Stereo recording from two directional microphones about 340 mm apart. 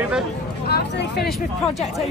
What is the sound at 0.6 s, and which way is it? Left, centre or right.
Speech, left.